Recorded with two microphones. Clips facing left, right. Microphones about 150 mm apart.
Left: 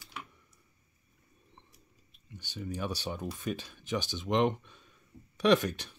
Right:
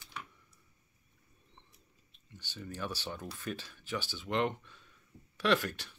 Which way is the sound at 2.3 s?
15° left (ahead or behind).